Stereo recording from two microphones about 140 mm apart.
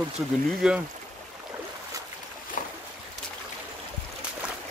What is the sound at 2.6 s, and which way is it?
Boat, 70° left (ahead or behind).